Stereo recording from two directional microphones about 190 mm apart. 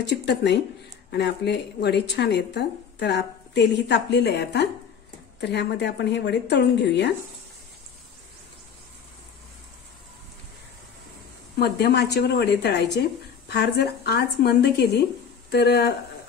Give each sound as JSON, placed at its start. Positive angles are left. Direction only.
{"t": 0.1, "sound": "a woman's voice", "side_deg": 65}
{"t": 11.5, "sound": "a woman's voice", "side_deg": 60}